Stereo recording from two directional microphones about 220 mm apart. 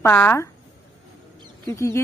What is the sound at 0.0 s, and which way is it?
Speech, 10° left (ahead or behind).